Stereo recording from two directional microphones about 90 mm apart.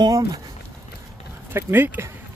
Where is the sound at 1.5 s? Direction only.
25° right (ahead or behind).